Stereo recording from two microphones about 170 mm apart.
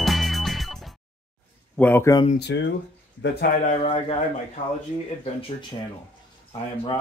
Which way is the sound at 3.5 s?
45° left (ahead or behind).